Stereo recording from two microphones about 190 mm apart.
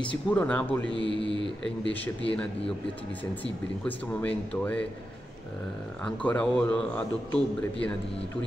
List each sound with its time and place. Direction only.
0.3 s a man's voice: 5° left (ahead or behind)
3.8 s speech: 10° left (ahead or behind)
6.0 s a man's voice: 5° left (ahead or behind)